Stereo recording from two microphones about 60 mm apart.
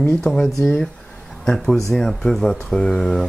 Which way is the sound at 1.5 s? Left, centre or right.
Centre.